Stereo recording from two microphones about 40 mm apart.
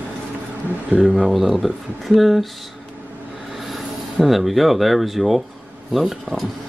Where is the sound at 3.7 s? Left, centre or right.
Centre.